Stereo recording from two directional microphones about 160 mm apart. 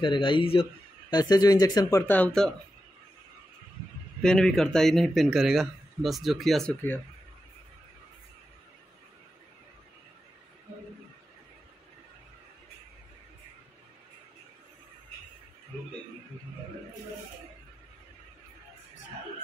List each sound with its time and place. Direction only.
0.0 s speech: 30° left (ahead or behind); by 2.5 s 5° left (ahead or behind)
4.2 s speech: 5° left (ahead or behind)